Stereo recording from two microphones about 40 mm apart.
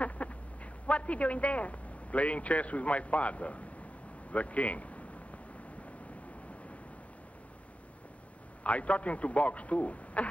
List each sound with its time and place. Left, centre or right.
0.0 s duck: left
0.8 s a man's voice: left
4.3 s a sound: left
8.6 s a man's voice: left